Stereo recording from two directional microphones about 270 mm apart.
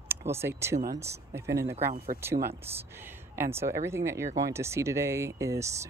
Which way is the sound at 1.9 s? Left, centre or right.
Right.